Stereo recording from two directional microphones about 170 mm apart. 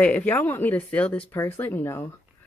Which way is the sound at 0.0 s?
10° left (ahead or behind).